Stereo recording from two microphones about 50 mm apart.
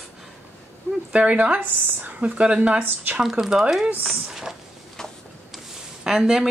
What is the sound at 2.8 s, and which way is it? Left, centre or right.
Speech, right.